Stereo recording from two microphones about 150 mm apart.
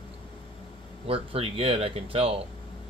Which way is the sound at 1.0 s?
40° right (ahead or behind).